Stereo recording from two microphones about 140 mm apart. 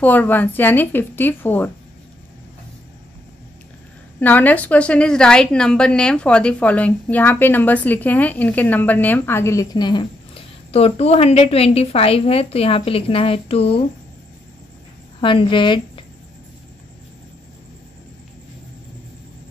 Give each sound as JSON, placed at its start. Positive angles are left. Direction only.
{"t": 0.0, "sound": "a woman's voice", "side_deg": 10}
{"t": 4.2, "sound": "a woman's voice", "side_deg": 10}
{"t": 10.7, "sound": "a woman's voice", "side_deg": 45}
{"t": 15.1, "sound": "speech", "side_deg": 35}